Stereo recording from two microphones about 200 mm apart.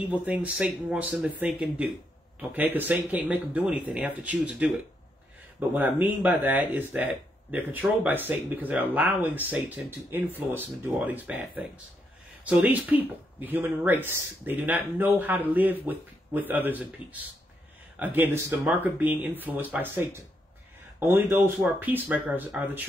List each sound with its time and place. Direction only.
0.1 s speech: 5° right (ahead or behind)
21.0 s speech: 10° right (ahead or behind)